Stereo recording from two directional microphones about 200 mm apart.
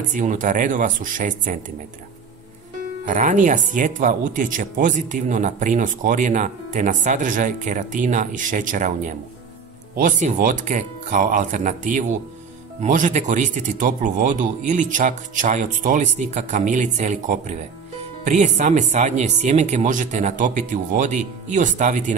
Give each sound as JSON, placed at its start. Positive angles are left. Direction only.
{"t": 0.1, "sound": "speech", "side_deg": -40}
{"t": 3.1, "sound": "speech", "side_deg": -40}